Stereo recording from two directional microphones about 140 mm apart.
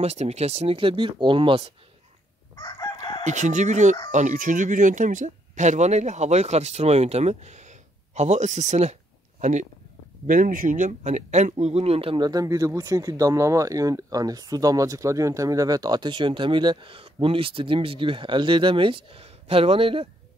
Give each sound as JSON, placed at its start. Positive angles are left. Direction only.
{"t": 0.0, "sound": "speech", "side_deg": -50}
{"t": 2.5, "sound": "chicken", "side_deg": 30}
{"t": 3.3, "sound": "speech", "side_deg": -60}
{"t": 10.2, "sound": "speech", "side_deg": -70}
{"t": 12.2, "sound": "speech", "side_deg": -25}